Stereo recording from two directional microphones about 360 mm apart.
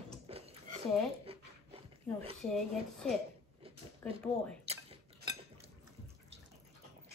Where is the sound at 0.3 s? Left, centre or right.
Centre.